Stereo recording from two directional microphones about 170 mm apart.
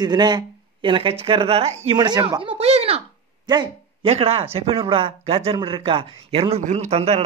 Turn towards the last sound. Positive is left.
turn(degrees=-40)  # may be behind; listen again after turning